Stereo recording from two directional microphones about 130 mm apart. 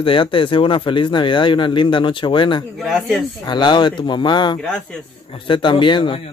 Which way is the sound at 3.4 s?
35° left (ahead or behind).